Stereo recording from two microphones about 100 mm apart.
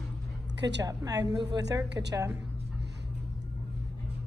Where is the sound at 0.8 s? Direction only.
35° right (ahead or behind).